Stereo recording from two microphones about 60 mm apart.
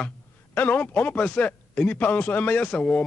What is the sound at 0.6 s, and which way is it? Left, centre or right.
Speech, left.